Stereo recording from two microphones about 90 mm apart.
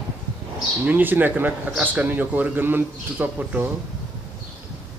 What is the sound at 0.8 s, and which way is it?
A man's voice, 20° right (ahead or behind).